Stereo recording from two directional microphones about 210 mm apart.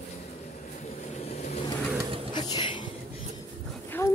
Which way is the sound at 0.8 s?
30° left (ahead or behind).